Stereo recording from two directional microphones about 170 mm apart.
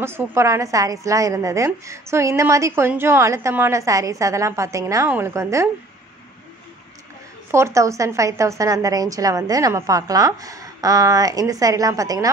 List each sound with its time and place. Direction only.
0.0 s a woman's voice: 15° right (ahead or behind)
7.5 s a woman's voice: 15° right (ahead or behind)